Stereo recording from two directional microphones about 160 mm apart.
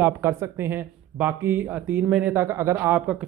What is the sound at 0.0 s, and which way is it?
Speech, 15° right (ahead or behind).